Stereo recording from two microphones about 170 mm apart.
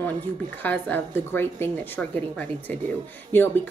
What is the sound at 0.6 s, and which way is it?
A woman's voice, 10° left (ahead or behind).